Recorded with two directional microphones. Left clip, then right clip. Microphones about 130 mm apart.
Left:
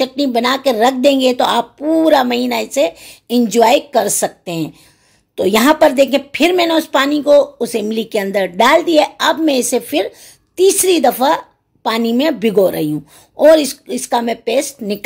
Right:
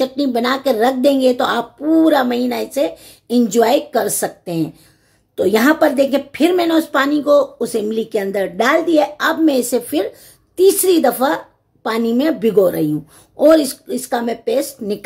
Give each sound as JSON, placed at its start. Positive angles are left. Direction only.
{"t": 0.0, "sound": "a woman's voice", "side_deg": 15}